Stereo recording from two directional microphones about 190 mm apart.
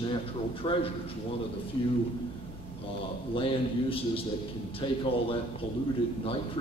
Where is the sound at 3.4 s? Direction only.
30° left (ahead or behind).